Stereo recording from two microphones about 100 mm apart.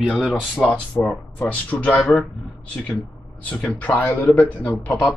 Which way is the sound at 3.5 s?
15° left (ahead or behind).